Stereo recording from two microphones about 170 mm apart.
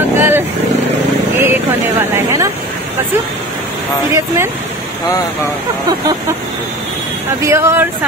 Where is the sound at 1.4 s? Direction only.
15° right (ahead or behind).